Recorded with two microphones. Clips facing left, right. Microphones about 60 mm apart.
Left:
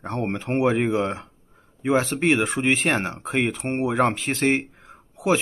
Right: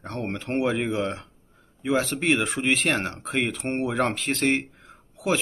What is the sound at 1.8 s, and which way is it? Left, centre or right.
Speech, left.